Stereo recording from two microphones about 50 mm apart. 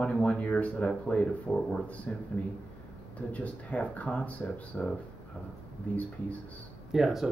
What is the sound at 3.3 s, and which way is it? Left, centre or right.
Speech, left.